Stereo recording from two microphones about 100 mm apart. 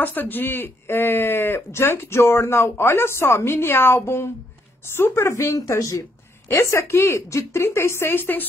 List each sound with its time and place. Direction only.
0.0 s speech: 20° left (ahead or behind)